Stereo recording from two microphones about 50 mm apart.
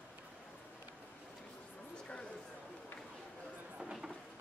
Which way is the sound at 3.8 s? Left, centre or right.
Centre.